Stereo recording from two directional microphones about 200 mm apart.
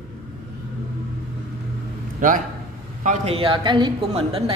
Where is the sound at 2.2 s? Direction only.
40° right (ahead or behind); by 4.4 s 25° right (ahead or behind).